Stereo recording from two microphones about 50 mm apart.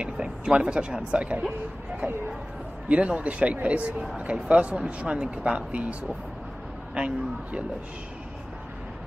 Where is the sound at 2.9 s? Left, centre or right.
Right.